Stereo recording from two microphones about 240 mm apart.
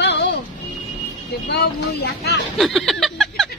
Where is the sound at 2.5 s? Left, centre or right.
Centre.